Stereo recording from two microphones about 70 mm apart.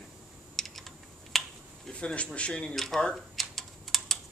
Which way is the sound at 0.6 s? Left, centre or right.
Centre.